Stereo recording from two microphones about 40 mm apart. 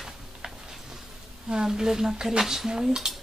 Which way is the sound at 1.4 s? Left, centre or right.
Centre.